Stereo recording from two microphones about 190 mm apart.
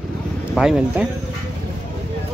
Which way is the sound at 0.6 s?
Centre (ahead or behind).